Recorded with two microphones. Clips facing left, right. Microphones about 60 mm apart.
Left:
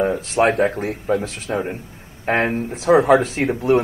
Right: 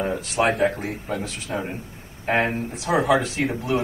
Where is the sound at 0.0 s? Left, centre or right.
Left.